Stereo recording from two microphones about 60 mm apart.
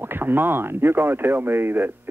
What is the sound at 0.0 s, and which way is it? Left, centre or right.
Speech, right.